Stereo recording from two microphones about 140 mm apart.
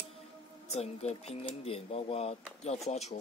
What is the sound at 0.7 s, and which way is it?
Speech, 50° left (ahead or behind).